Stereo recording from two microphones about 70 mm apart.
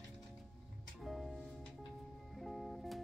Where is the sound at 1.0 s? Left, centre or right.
Centre.